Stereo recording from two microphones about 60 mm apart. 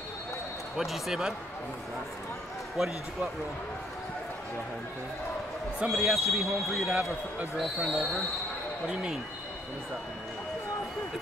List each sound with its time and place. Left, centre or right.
0.7 s speech: centre
5.8 s speech: centre
6.0 s speech: centre
8.8 s speech: centre